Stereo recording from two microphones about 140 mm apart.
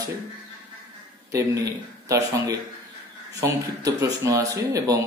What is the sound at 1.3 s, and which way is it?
Speech, 25° right (ahead or behind).